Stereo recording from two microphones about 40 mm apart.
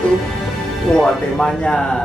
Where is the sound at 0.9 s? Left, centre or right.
Left.